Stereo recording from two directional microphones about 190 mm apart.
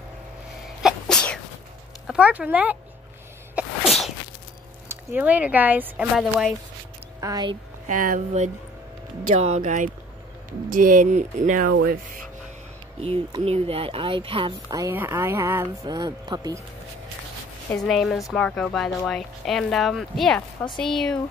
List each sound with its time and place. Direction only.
0.8 s sneeze: 5° left (ahead or behind)
2.0 s speech: 5° right (ahead or behind)
3.5 s sneeze: centre (ahead or behind)
4.8 s speech: 10° right (ahead or behind)
7.2 s speech: 20° right (ahead or behind)
7.9 s speech: 45° right (ahead or behind)
9.6 s speech: 40° right (ahead or behind)
13.0 s speech: 30° right (ahead or behind)
14.7 s speech: 15° right (ahead or behind)
17.7 s a woman's voice: centre (ahead or behind)